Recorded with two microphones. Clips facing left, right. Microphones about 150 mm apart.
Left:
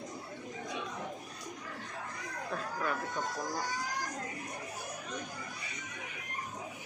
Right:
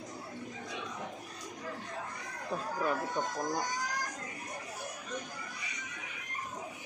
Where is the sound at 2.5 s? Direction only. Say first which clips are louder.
Right 3 dB; 20° right (ahead or behind).